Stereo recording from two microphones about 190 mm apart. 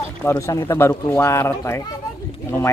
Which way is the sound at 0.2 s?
15° left (ahead or behind).